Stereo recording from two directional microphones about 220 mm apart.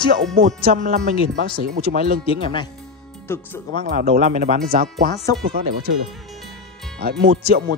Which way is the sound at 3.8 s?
40° right (ahead or behind).